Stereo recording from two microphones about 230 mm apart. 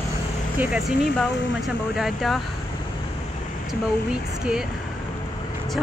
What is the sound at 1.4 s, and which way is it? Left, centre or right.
Speech, left.